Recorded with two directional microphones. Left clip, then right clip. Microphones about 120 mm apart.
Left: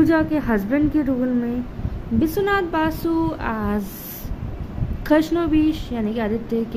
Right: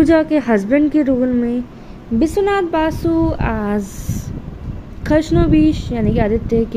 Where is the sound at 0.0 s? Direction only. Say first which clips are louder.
Right 5 dB; 50° right (ahead or behind).